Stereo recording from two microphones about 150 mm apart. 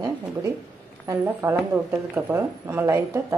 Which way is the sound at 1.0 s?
20° right (ahead or behind).